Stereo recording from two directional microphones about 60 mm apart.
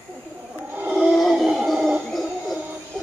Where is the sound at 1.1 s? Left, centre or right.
Centre.